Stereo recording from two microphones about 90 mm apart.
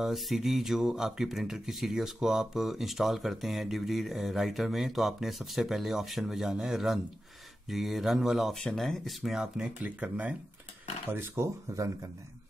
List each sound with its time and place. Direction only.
0.0 s speech: 5° right (ahead or behind)
11.1 s speech: 30° right (ahead or behind)